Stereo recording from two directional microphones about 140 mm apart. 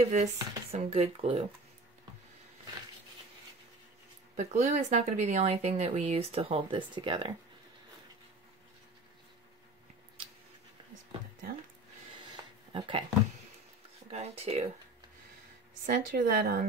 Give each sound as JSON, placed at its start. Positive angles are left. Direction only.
{"t": 0.1, "sound": "speech", "side_deg": -55}
{"t": 4.4, "sound": "speech", "side_deg": -55}
{"t": 12.2, "sound": "a sound", "side_deg": -35}
{"t": 14.1, "sound": "speech", "side_deg": -50}
{"t": 15.8, "sound": "speech", "side_deg": -85}